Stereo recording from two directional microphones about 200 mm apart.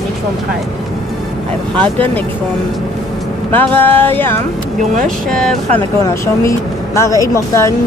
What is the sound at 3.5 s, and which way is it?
Speech, 10° left (ahead or behind).